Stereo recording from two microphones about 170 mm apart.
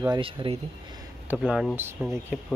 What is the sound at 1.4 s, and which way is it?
Speech, centre (ahead or behind).